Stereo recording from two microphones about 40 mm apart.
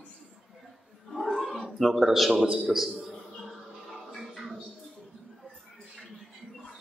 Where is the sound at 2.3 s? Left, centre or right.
Centre.